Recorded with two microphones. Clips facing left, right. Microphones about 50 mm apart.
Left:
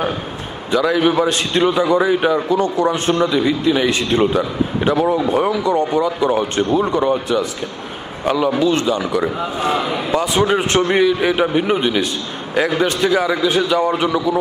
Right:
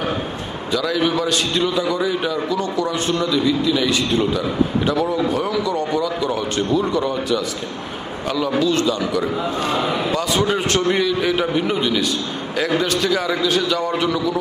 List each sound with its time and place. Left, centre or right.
0.7 s a man's voice: left